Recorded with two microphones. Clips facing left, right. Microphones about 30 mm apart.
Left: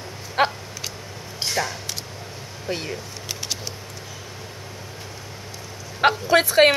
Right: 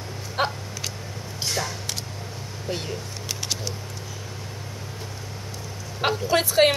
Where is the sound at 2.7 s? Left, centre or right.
Centre.